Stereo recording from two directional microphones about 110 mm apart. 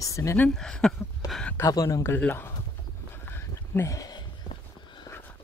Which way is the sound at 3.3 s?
20° left (ahead or behind).